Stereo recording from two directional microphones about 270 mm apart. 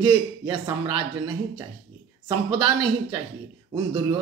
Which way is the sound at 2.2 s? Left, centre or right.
Centre.